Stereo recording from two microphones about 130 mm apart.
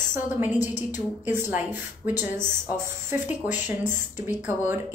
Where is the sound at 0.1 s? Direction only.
15° right (ahead or behind).